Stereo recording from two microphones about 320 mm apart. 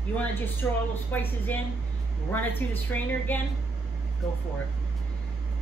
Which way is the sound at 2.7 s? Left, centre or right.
Centre.